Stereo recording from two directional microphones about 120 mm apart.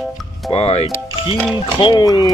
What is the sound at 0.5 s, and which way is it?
Speech, 45° left (ahead or behind).